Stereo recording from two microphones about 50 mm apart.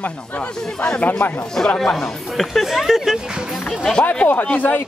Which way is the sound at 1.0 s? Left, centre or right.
Left.